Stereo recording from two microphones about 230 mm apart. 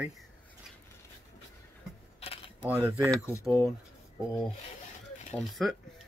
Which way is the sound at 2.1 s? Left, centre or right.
Left.